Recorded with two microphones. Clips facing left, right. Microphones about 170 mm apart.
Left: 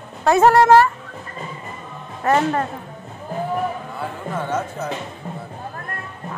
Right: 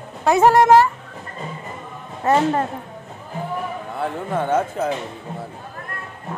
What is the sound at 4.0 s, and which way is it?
Speech, 55° right (ahead or behind).